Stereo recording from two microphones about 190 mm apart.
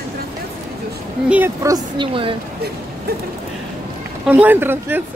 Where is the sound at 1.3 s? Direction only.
15° right (ahead or behind).